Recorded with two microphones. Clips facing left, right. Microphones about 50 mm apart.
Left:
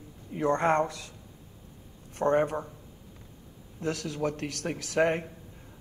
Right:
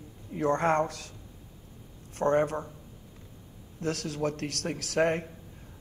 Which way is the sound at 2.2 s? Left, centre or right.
Centre.